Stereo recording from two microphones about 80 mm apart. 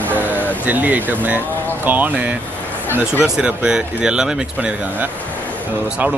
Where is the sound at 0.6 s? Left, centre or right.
Right.